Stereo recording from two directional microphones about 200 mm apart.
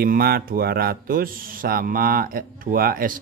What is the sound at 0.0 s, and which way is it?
Speech, 50° right (ahead or behind).